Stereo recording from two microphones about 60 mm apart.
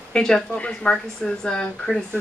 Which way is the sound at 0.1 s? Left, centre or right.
Centre.